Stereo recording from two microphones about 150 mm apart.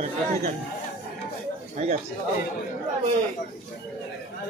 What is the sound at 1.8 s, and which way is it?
Speech, 60° right (ahead or behind).